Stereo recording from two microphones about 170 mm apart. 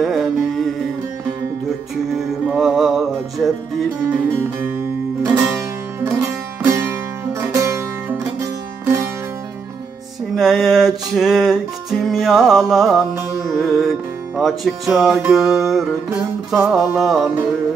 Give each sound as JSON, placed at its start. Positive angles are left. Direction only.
{"t": 0.0, "sound": "mantra", "side_deg": 0}
{"t": 2.1, "sound": "music", "side_deg": 0}
{"t": 5.2, "sound": "music", "side_deg": -15}
{"t": 10.3, "sound": "music", "side_deg": 0}